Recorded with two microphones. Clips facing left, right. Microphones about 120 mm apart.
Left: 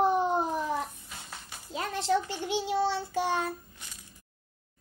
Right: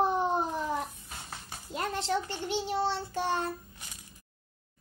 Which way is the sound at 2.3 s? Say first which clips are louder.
Left 2 dB; 10° left (ahead or behind).